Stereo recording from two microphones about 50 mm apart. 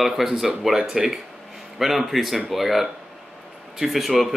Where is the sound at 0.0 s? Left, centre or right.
Centre.